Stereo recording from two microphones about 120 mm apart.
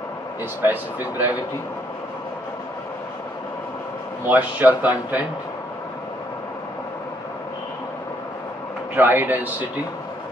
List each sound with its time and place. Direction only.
0.6 s speech: 15° right (ahead or behind)
4.3 s speech: 15° right (ahead or behind)
8.9 s speech: 15° right (ahead or behind)